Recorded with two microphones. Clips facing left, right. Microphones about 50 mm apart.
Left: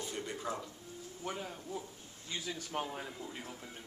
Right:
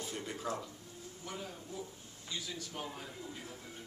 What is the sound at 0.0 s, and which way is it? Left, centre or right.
Speech, centre.